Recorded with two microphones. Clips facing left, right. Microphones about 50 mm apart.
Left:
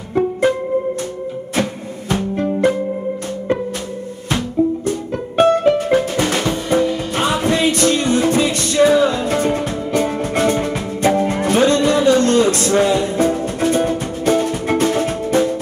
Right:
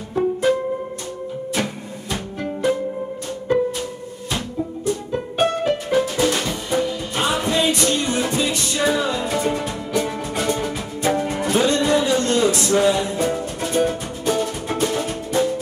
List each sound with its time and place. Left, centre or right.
1.5 s music: left
4.8 s music: left